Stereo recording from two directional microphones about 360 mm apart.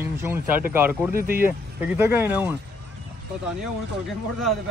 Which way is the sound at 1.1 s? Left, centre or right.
Right.